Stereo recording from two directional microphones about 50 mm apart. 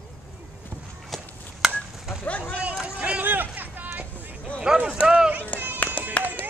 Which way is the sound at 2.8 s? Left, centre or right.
Right.